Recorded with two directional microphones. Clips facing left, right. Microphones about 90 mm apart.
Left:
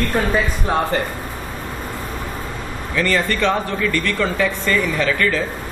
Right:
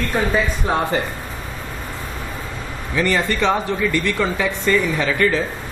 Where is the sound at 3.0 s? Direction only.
20° right (ahead or behind).